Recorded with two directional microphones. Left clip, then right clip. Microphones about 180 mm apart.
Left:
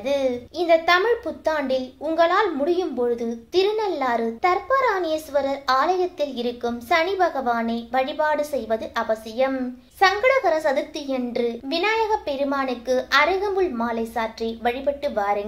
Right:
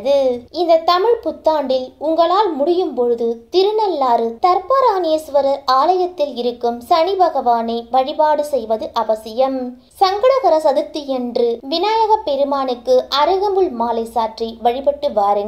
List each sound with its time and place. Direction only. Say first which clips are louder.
0.0 s a woman's voice: right 8 dB; 15° right (ahead or behind)